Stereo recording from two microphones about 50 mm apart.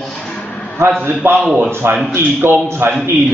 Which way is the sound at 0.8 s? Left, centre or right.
Right.